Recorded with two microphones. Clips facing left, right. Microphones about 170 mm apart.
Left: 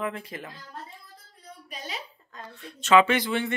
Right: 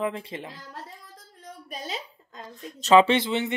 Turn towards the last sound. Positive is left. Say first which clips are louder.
# right 2 dB
turn(degrees=-20)  # may be behind; listen again after turning